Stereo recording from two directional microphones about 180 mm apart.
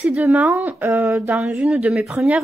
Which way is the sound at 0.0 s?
5° right (ahead or behind).